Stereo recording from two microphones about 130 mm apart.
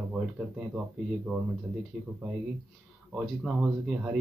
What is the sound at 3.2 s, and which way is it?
Speech, 5° right (ahead or behind).